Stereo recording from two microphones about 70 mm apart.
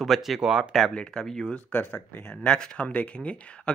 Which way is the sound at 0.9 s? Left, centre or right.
Centre.